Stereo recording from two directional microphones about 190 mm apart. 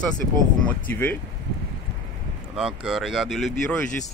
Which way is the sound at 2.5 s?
5° right (ahead or behind).